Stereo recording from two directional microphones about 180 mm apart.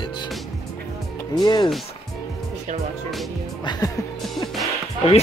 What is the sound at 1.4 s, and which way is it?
Speech, 25° left (ahead or behind).